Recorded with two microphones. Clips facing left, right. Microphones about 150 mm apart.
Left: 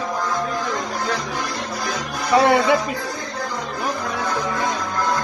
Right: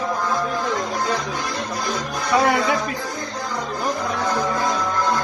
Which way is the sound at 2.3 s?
25° left (ahead or behind).